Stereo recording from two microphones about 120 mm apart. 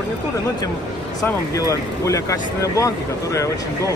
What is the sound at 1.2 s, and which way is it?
Speech, 25° left (ahead or behind).